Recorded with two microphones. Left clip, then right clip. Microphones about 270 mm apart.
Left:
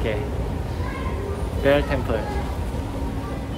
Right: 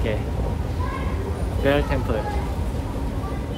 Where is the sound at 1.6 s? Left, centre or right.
Centre.